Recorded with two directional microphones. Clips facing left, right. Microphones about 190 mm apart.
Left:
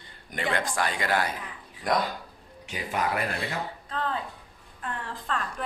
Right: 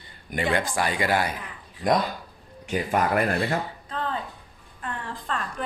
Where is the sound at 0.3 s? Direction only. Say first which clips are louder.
Right 4 dB; 10° right (ahead or behind).